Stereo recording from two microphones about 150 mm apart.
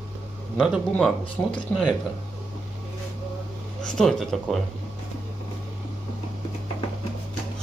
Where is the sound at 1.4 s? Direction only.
15° left (ahead or behind).